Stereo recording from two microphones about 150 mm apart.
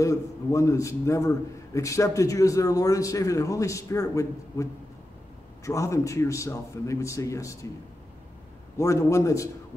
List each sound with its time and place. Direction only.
0.0 s a man's voice: 20° left (ahead or behind)
5.7 s a man's voice: 20° left (ahead or behind)
8.7 s a man's voice: 20° left (ahead or behind)